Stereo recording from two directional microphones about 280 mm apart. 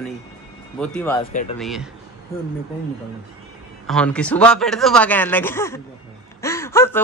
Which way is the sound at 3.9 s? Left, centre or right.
Centre.